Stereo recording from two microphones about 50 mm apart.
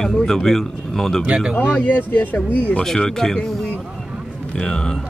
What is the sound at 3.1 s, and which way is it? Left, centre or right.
Speech, centre.